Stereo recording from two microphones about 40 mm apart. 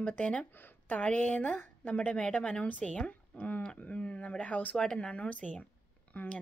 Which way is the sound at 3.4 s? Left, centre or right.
Left.